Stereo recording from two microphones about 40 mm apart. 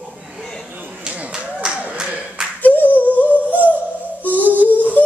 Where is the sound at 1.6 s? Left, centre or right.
Centre.